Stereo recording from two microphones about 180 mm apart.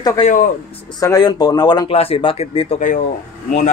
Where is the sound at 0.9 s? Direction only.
20° left (ahead or behind).